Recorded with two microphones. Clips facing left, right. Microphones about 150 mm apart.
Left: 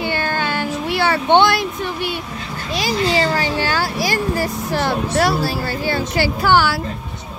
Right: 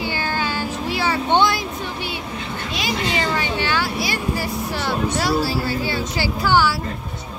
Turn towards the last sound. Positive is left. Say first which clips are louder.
# left 2 dB
turn(degrees=65)  # may be behind; listen again after turning